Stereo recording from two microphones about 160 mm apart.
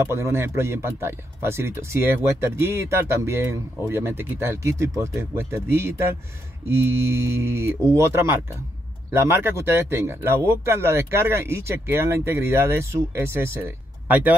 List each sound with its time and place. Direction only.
0.0 s speech: 15° right (ahead or behind)